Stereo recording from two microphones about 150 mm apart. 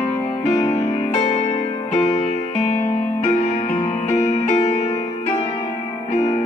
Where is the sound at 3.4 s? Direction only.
50° left (ahead or behind).